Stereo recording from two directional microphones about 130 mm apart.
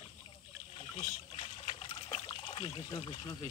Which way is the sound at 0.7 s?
50° left (ahead or behind).